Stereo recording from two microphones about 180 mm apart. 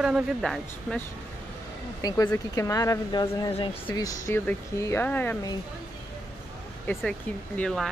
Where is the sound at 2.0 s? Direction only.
20° left (ahead or behind).